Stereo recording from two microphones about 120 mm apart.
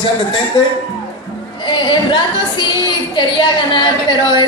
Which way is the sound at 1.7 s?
40° left (ahead or behind).